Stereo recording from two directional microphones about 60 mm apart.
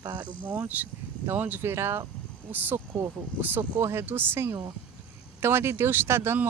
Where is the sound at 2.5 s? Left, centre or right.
Right.